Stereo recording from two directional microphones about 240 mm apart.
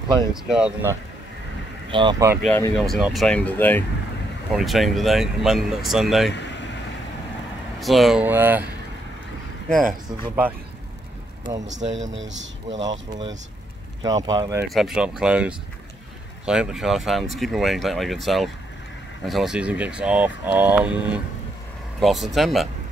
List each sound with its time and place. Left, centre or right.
0.3 s speech: centre
1.9 s speech: centre
2.4 s speech: centre
6.3 s vehicle: left
7.8 s speech: centre
10.0 s speech: centre
11.8 s speech: right
14.0 s speech: centre
14.7 s speech: centre